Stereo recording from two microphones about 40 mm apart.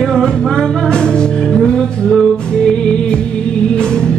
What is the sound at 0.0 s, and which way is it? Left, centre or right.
Music, centre.